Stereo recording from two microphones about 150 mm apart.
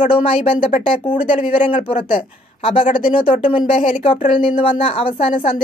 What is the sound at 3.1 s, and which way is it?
Speech, 35° left (ahead or behind).